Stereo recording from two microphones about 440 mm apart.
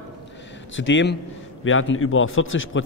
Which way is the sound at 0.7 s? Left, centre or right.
Left.